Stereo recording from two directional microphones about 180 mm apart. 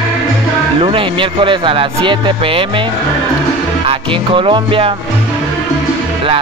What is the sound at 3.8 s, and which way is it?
Speech, 30° right (ahead or behind).